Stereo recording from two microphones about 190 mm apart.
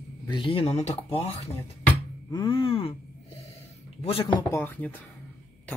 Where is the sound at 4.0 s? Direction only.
30° left (ahead or behind); by 5.0 s 10° left (ahead or behind).